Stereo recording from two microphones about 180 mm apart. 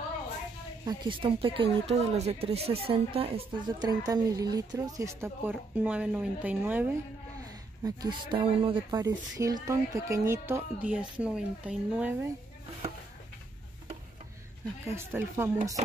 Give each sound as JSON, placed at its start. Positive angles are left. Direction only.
{"t": 0.8, "sound": "speech", "side_deg": -25}
{"t": 4.0, "sound": "speech", "side_deg": -20}
{"t": 7.4, "sound": "speech", "side_deg": -20}
{"t": 14.9, "sound": "speech", "side_deg": -15}